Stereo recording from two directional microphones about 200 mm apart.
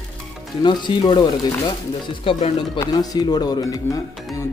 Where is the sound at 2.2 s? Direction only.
30° left (ahead or behind).